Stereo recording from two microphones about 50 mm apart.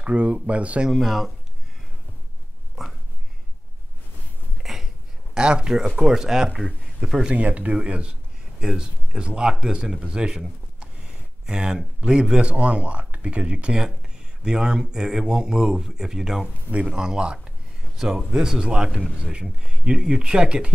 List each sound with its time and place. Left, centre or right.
0.0 s speech: right
0.8 s speech: centre
2.8 s a sound: centre
4.6 s a sound: centre
5.3 s speech: centre
7.3 s speech: right
11.4 s speech: centre